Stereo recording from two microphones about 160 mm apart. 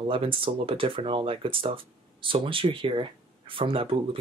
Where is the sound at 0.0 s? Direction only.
35° right (ahead or behind).